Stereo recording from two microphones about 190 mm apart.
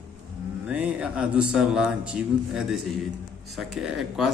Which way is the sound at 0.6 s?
5° right (ahead or behind).